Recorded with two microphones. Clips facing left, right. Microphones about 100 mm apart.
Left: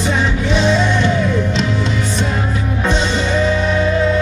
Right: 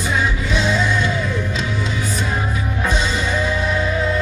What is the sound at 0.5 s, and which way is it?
Music, 30° left (ahead or behind).